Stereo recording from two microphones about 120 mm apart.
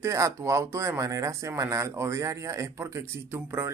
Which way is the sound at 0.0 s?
25° right (ahead or behind).